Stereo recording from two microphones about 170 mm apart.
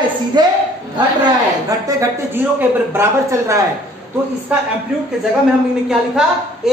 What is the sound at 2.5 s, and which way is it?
Speech, 15° right (ahead or behind).